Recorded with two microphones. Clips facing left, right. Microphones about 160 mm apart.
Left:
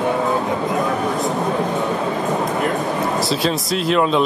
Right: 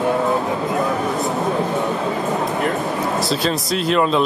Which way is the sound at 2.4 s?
Centre (ahead or behind).